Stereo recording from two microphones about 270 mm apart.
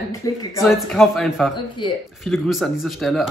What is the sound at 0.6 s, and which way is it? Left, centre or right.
Speech, centre.